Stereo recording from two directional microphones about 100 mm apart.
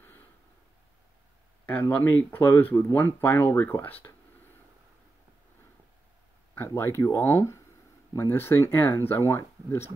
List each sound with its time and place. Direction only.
1.7 s speech: 15° left (ahead or behind)
6.5 s speech: 25° left (ahead or behind)